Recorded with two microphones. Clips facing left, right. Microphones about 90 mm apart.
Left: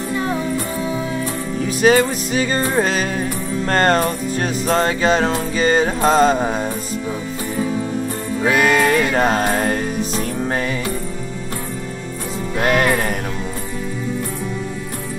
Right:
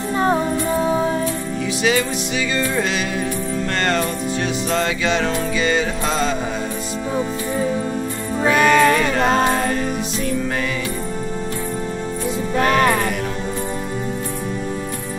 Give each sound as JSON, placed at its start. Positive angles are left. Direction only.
{"t": 0.2, "sound": "music", "side_deg": -35}
{"t": 1.8, "sound": "music", "side_deg": 45}
{"t": 8.6, "sound": "music", "side_deg": 40}
{"t": 12.6, "sound": "music", "side_deg": -35}